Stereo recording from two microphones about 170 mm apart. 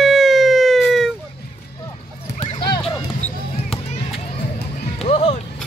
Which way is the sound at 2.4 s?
25° left (ahead or behind).